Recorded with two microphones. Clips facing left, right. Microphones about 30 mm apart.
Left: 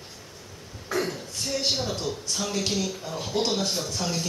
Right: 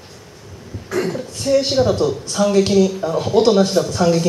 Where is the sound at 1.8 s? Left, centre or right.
Right.